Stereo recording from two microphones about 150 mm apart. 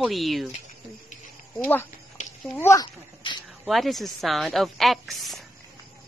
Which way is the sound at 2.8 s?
30° left (ahead or behind).